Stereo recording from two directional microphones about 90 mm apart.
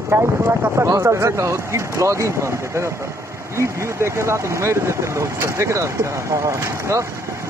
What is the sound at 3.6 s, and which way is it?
Speech, 30° right (ahead or behind).